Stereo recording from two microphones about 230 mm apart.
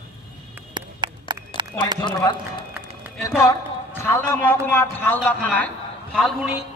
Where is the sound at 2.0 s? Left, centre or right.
Centre.